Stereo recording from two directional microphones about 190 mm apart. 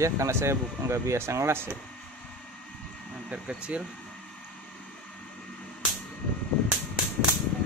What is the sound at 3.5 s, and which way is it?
Speech, 5° right (ahead or behind).